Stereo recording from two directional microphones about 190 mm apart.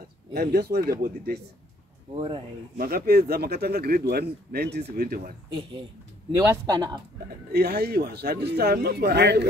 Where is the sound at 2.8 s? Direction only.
50° right (ahead or behind).